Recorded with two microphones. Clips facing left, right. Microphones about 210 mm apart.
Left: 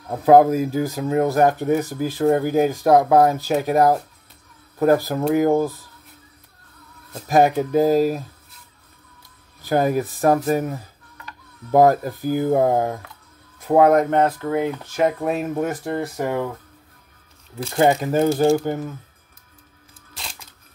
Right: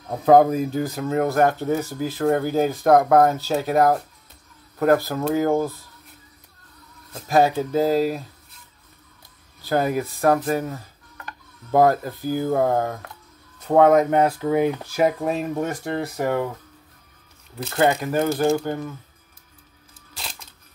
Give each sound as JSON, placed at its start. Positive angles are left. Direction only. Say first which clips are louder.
{"t": 0.2, "sound": "speech", "louder": "left 2 dB", "side_deg": 5}
{"t": 4.9, "sound": "speech", "louder": "left 2 dB", "side_deg": 15}
{"t": 7.2, "sound": "speech", "louder": "left 2 dB", "side_deg": 15}
{"t": 9.6, "sound": "speech", "louder": "left 2 dB", "side_deg": 15}
{"t": 11.9, "sound": "speech", "louder": "left 2 dB", "side_deg": 15}
{"t": 13.7, "sound": "speech", "louder": "even", "side_deg": 0}
{"t": 14.2, "sound": "speech", "louder": "right 1 dB", "side_deg": -15}
{"t": 17.6, "sound": "speech", "louder": "left 2 dB", "side_deg": 15}
{"t": 18.0, "sound": "speech", "louder": "left 3 dB", "side_deg": 30}
{"t": 18.5, "sound": "speech", "louder": "left 3 dB", "side_deg": 10}
{"t": 20.2, "sound": "a sound", "louder": "even", "side_deg": 0}